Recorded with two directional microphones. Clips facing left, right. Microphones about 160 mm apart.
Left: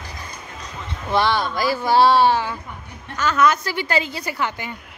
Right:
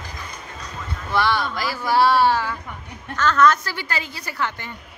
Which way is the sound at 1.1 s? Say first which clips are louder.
Left 2 dB; 25° left (ahead or behind).